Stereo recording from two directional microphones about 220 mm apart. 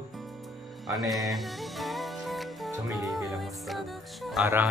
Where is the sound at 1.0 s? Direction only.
Centre (ahead or behind).